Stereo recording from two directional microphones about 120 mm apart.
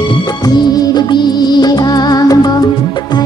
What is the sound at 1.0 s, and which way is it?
Music, 35° left (ahead or behind).